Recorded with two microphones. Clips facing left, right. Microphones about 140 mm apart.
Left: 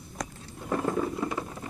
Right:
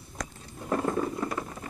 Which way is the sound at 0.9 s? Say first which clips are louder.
Even; 5° left (ahead or behind).